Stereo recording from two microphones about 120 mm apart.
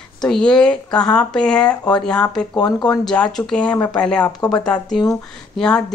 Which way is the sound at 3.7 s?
25° left (ahead or behind).